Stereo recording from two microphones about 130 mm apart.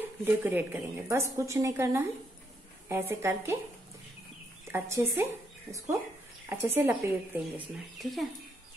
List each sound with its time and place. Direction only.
0.2 s speech: 15° right (ahead or behind)
4.6 s speech: 20° right (ahead or behind)
8.0 s speech: centre (ahead or behind)